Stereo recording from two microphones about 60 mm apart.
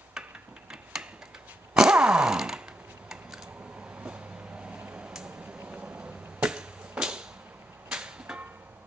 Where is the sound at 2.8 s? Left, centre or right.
Right.